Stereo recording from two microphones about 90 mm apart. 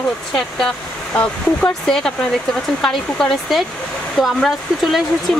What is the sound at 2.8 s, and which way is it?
Speech, 5° left (ahead or behind).